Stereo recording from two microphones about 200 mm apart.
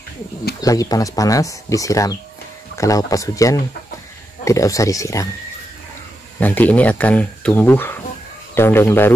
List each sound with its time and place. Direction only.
0.6 s speech: 15° left (ahead or behind)
6.4 s speech: 10° left (ahead or behind)